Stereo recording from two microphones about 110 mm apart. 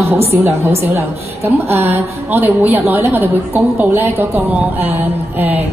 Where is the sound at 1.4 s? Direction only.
20° right (ahead or behind).